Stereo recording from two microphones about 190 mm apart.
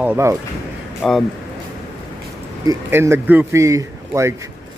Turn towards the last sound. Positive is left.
turn(degrees=-15)  # may be behind; listen again after turning